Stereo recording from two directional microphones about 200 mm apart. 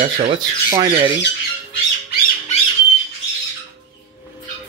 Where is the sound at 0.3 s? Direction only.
20° right (ahead or behind).